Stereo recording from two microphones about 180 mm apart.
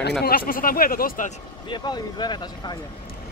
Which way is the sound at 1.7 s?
25° left (ahead or behind).